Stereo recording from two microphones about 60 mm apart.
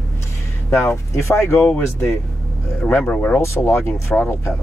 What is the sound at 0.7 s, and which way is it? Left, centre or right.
Speech, left.